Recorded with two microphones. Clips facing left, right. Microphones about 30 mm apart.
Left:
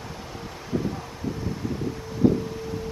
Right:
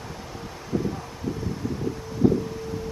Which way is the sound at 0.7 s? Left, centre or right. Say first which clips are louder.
Right 1 dB; left.